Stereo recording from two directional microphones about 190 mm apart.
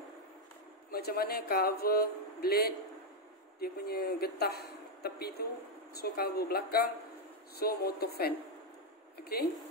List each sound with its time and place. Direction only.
0.9 s speech: 55° left (ahead or behind)